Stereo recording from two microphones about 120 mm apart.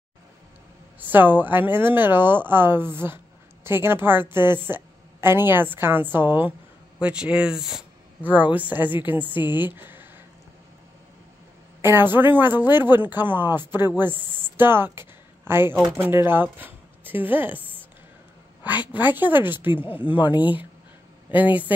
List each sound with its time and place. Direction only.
0.9 s a woman's voice: 15° right (ahead or behind)
9.8 s a sound: 15° right (ahead or behind)
11.8 s a woman's voice: 20° right (ahead or behind)
14.4 s a sound: 20° right (ahead or behind)
15.9 s speech: 20° right (ahead or behind)
18.9 s a woman's voice: 15° right (ahead or behind)